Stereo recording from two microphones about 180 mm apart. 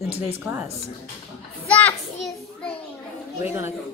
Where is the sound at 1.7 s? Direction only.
5° left (ahead or behind).